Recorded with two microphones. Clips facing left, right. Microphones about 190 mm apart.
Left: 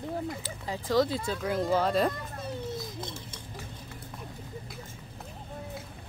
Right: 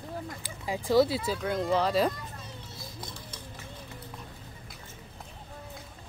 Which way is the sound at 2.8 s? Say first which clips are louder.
Left 5 dB; 25° left (ahead or behind).